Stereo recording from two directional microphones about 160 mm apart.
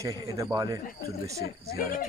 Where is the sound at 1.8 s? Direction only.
65° left (ahead or behind).